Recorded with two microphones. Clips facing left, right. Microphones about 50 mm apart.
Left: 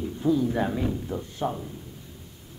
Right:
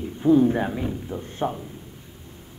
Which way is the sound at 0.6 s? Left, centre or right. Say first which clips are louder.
Even; centre.